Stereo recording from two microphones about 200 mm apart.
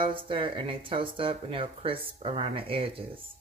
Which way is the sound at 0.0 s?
25° right (ahead or behind).